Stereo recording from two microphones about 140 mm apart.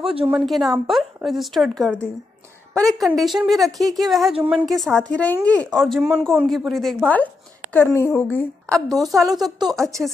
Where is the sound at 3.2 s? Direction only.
Centre (ahead or behind).